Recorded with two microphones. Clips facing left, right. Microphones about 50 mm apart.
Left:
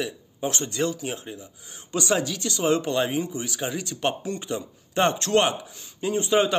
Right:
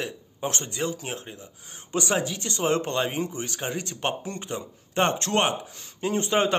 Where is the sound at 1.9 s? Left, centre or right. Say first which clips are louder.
Left 1 dB; right.